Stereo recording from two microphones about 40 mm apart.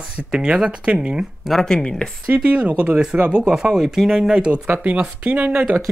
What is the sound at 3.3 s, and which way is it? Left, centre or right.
Speech, right.